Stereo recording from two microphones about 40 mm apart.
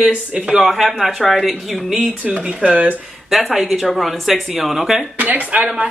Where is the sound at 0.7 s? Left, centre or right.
Centre.